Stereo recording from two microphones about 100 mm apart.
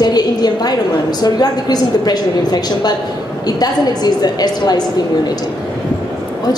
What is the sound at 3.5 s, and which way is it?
A woman's voice, 40° left (ahead or behind).